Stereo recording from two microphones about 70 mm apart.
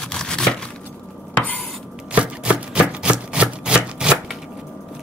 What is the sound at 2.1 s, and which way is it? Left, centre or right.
Chopping, centre.